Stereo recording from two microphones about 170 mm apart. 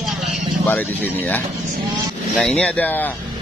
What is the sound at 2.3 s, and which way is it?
Speech, 5° left (ahead or behind).